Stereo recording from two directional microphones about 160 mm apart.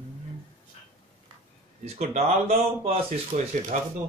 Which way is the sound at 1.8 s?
45° right (ahead or behind).